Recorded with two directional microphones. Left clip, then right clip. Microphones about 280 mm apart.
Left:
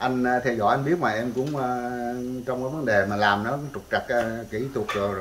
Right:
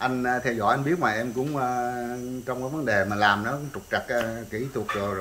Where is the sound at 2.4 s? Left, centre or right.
Centre.